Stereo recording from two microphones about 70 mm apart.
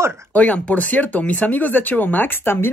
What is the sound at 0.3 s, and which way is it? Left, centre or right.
Speech, centre.